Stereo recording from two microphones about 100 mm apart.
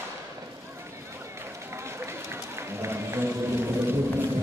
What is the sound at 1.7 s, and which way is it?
Run, 25° right (ahead or behind).